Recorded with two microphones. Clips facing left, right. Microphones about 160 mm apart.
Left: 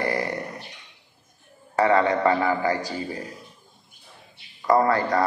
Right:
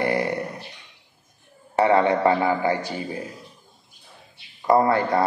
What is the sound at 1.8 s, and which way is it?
Speech, 25° right (ahead or behind).